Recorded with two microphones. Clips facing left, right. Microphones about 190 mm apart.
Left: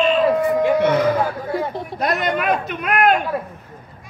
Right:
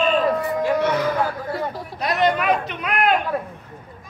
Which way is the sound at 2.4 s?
50° left (ahead or behind).